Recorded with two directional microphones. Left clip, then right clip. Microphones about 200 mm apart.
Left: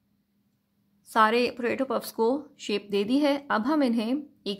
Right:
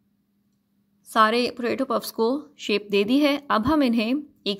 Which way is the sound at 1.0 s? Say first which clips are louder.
Right 2 dB; 10° right (ahead or behind).